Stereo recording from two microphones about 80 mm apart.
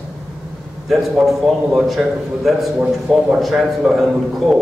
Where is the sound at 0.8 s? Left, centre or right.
Centre.